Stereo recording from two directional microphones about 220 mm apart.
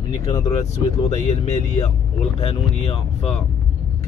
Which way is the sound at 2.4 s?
25° left (ahead or behind).